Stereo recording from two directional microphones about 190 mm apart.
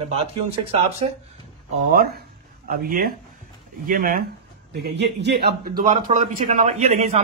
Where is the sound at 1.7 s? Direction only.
45° right (ahead or behind).